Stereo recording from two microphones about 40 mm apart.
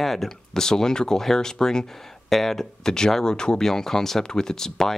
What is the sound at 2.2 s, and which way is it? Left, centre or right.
Speech, centre.